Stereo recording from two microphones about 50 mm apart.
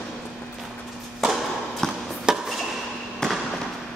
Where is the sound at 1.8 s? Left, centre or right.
Centre.